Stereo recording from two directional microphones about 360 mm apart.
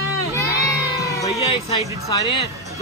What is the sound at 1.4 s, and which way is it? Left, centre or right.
Speech, centre.